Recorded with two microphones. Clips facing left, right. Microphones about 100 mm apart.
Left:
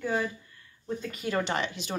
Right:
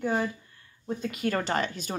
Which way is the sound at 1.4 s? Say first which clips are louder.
Right 1 dB; 40° right (ahead or behind).